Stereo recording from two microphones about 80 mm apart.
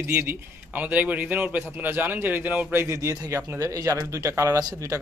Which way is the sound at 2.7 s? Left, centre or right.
Right.